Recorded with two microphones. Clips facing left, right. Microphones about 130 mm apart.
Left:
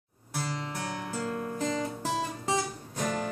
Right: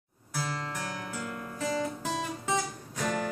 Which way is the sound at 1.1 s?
35° left (ahead or behind).